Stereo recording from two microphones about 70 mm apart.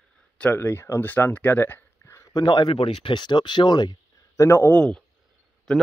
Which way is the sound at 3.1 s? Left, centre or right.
Left.